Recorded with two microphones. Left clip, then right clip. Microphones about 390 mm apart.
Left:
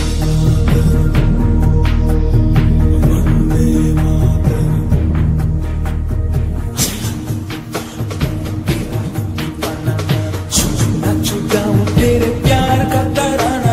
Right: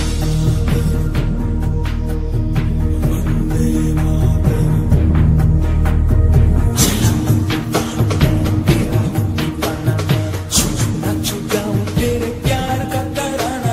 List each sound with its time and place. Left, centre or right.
0.2 s music: left
2.5 s music: left
3.5 s music: left
10.5 s music: centre
11.0 s music: left